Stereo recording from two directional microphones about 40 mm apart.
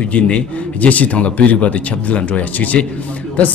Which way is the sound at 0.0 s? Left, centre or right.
Left.